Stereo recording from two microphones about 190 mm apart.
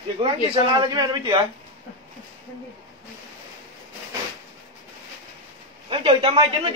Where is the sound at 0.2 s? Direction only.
30° right (ahead or behind).